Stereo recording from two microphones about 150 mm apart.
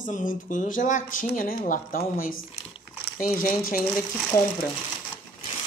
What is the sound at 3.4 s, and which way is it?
Speech, 70° left (ahead or behind).